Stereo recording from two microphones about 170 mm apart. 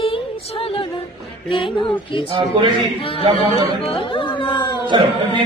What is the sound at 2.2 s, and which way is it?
Speech, 30° right (ahead or behind).